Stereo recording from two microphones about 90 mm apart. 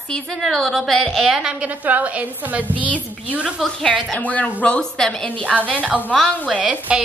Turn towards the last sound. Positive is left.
turn(degrees=-10)  # may be behind; listen again after turning